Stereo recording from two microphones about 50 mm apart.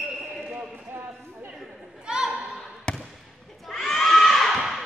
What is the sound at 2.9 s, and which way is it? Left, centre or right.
Basketball bounce, centre.